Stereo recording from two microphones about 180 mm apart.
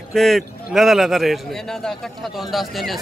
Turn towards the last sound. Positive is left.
turn(degrees=0)  # may be behind; listen again after turning